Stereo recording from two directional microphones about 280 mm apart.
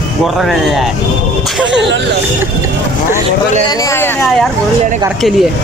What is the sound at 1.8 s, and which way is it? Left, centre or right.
Speech, right.